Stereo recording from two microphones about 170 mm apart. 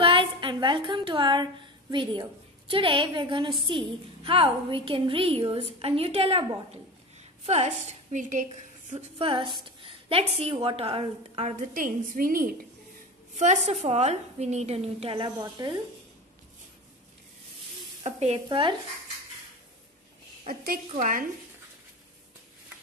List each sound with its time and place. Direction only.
0.0 s a sound: 30° right (ahead or behind)
2.7 s a woman's voice: 30° right (ahead or behind); by 8.5 s 50° right (ahead or behind)
8.9 s a woman's voice: 35° right (ahead or behind)
11.7 s a woman's voice: 55° right (ahead or behind)
13.3 s a woman's voice: 45° right (ahead or behind); by 15.8 s 20° right (ahead or behind)
18.0 s a woman's voice: 40° right (ahead or behind)
20.4 s a woman's voice: 60° right (ahead or behind)